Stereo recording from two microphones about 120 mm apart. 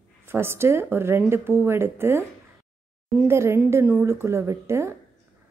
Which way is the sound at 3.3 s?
20° right (ahead or behind).